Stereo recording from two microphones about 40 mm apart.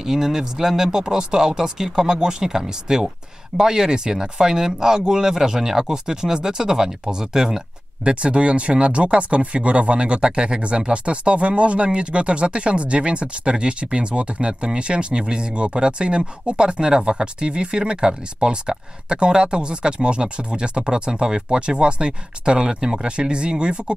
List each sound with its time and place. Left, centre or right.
0.0 s speech: centre
8.0 s speech: right